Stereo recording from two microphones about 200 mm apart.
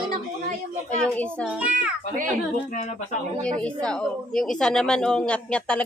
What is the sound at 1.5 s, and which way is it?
Speech, 5° right (ahead or behind).